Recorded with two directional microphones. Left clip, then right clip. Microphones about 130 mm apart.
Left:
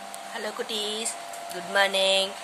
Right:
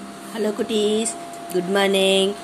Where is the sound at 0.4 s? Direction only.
15° right (ahead or behind).